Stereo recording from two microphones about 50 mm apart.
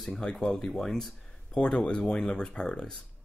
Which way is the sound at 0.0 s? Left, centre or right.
Centre.